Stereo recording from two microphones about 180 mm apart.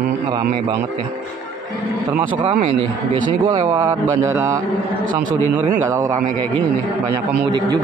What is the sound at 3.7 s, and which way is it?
A man's voice, 15° right (ahead or behind).